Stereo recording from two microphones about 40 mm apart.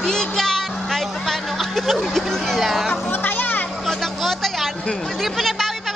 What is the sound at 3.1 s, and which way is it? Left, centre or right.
Children playing, left.